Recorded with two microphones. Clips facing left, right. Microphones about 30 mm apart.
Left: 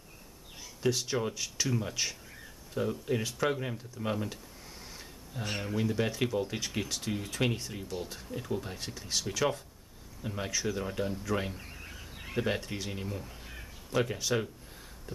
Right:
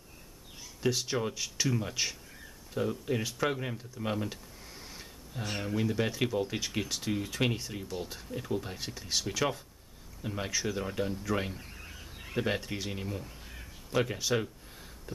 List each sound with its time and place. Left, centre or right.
0.8 s speech: centre
5.4 s speech: centre
11.5 s bird: centre
12.4 s speech: centre
15.1 s a sound: centre